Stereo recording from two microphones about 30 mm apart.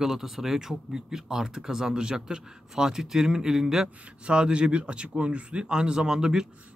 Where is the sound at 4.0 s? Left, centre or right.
Right.